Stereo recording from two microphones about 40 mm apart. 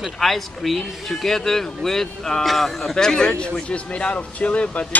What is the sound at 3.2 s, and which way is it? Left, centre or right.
Speech, left.